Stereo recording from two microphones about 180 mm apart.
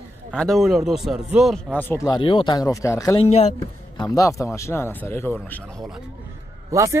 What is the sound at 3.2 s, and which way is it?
Speech, 35° left (ahead or behind).